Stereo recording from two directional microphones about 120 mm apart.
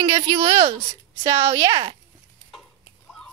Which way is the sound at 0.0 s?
35° right (ahead or behind).